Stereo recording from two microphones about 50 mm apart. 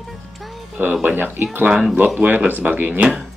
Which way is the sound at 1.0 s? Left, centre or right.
Right.